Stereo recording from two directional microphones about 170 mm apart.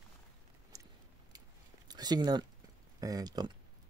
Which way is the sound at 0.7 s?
15° right (ahead or behind).